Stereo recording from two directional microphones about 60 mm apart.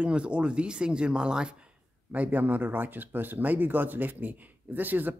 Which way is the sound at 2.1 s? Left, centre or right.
Right.